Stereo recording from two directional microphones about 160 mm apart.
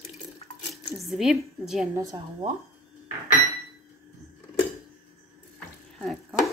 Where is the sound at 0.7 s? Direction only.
Centre (ahead or behind).